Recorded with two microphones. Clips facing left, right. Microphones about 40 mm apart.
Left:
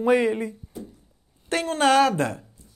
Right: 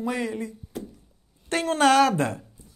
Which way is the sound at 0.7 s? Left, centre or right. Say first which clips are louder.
Right 2 dB; right.